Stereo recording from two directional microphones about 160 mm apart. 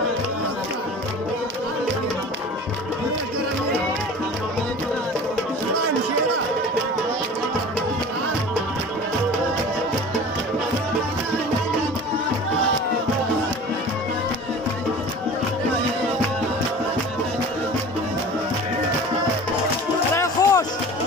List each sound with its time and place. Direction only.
20.4 s music: 20° left (ahead or behind)